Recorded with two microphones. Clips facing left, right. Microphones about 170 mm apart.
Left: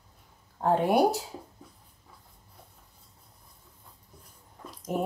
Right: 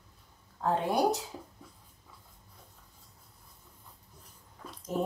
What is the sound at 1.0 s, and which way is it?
Speech, 30° left (ahead or behind).